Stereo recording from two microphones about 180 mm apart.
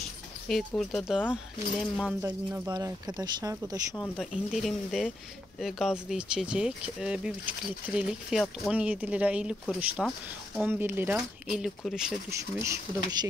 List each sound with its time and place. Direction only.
0.5 s speech: centre (ahead or behind)
3.2 s speech: 20° right (ahead or behind)
3.9 s speech: 5° left (ahead or behind)
10.7 s speech: 10° right (ahead or behind)
11.4 s speech: centre (ahead or behind)
12.3 s speech: 15° right (ahead or behind)